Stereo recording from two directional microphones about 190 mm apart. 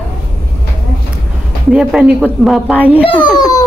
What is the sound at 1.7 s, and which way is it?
A man's voice, 5° right (ahead or behind).